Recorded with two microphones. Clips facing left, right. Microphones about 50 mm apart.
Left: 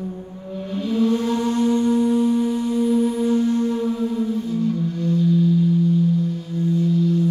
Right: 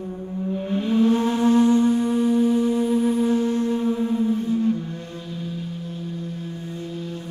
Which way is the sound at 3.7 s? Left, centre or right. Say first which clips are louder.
Even; right.